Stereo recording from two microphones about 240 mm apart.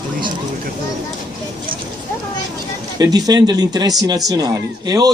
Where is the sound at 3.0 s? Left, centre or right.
Centre.